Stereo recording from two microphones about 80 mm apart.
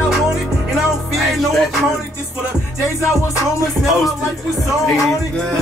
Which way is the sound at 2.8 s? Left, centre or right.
Left.